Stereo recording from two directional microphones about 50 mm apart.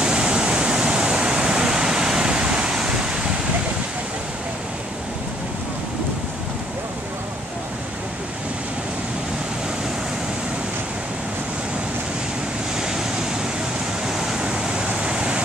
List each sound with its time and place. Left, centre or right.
0.0 s a sound: centre
12.7 s waves: centre
14.0 s waves: centre
14.9 s vehicle: centre